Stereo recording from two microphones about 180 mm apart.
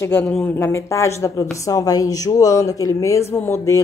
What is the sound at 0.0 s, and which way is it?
A woman's voice, 10° left (ahead or behind).